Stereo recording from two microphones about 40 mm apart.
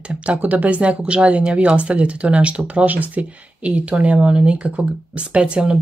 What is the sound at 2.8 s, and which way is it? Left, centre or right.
Speech, right.